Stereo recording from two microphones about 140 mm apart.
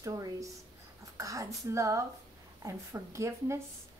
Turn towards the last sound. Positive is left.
turn(degrees=-20)  # may be behind; listen again after turning